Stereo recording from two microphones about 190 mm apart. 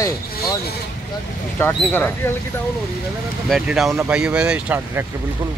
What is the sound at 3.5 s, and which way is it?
Speech, centre (ahead or behind).